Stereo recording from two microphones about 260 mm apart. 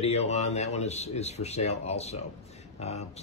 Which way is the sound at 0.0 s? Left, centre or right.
Left.